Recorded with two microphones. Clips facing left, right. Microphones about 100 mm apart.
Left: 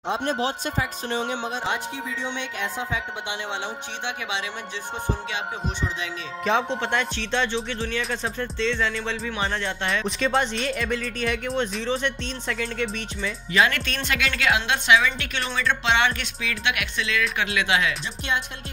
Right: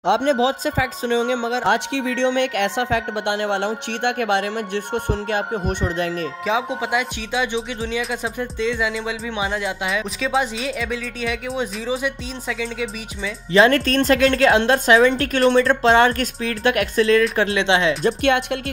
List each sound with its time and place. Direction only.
0.1 s speech: 90° right
1.5 s speech: 70° right (ahead or behind); by 6.0 s 50° right (ahead or behind)
6.4 s music: 5° right (ahead or behind)
8.0 s speech: 10° right (ahead or behind)
13.5 s speech: 35° right (ahead or behind)
18.0 s speech: 65° right (ahead or behind)